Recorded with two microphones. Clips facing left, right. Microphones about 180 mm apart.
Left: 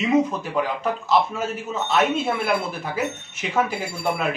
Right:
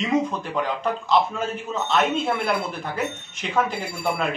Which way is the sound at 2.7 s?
5° left (ahead or behind).